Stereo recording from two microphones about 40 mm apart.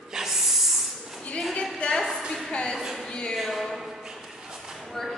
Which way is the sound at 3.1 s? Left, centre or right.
Centre.